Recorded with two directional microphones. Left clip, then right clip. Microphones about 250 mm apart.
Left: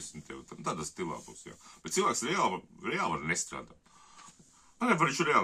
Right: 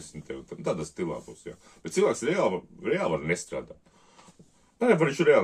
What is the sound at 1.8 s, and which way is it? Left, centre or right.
Speech, left.